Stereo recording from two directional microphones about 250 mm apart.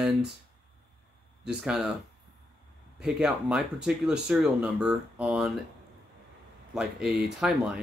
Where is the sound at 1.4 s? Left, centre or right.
Centre.